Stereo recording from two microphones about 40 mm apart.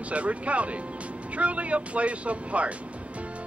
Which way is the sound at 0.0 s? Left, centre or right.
Right.